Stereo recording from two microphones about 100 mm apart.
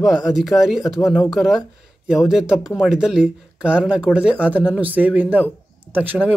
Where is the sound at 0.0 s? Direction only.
5° right (ahead or behind).